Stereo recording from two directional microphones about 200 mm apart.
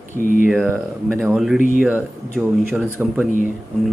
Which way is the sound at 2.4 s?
10° right (ahead or behind).